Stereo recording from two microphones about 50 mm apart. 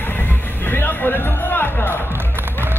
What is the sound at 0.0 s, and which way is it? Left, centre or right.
Music, left.